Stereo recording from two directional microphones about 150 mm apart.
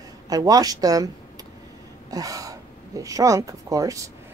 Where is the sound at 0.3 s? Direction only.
25° right (ahead or behind).